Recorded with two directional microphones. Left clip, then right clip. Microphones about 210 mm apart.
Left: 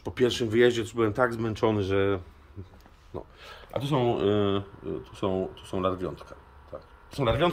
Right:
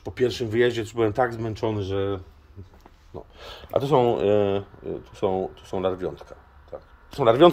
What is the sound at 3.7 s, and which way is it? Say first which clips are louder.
Speech: right 7 dB; 20° right (ahead or behind).